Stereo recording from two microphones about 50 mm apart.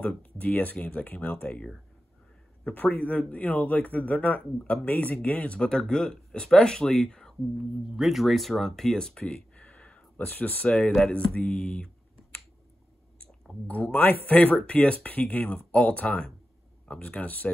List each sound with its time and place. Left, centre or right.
0.0 s speech: left
2.7 s speech: left; by 7.3 s centre
7.8 s speech: centre; by 11.9 s left
13.7 s speech: left